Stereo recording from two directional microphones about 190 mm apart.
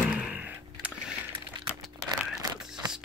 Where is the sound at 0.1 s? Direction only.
5° right (ahead or behind).